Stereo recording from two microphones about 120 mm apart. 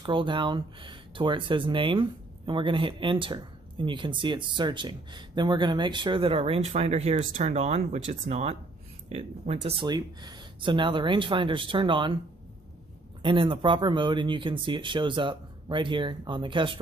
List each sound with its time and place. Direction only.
0.0 s speech: 40° right (ahead or behind)
13.2 s speech: 45° right (ahead or behind)